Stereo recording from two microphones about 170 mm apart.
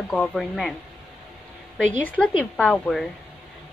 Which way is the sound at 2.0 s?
10° left (ahead or behind).